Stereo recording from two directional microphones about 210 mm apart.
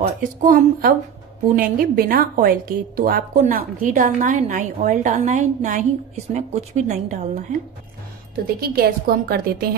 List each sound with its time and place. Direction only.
0.0 s a woman's voice: 40° right (ahead or behind)
8.5 s a woman's voice: 45° right (ahead or behind)